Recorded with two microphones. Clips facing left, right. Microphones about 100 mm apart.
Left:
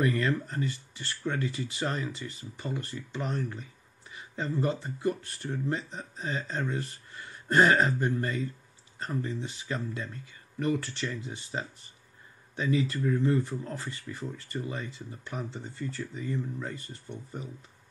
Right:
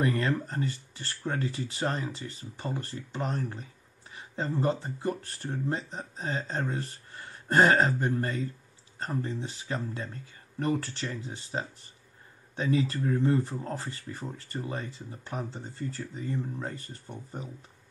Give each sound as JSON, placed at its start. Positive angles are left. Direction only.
{"t": 0.0, "sound": "speech", "side_deg": -30}